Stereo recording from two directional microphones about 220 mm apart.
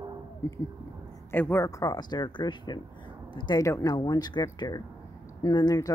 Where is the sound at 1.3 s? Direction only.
10° left (ahead or behind).